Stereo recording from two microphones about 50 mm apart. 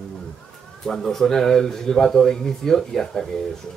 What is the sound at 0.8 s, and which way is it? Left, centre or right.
Speech, centre.